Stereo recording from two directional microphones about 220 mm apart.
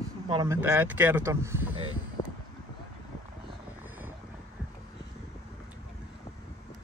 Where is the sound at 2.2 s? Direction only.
25° left (ahead or behind).